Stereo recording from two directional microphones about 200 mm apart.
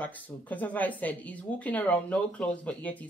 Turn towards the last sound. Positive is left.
turn(degrees=5)  # may be behind; listen again after turning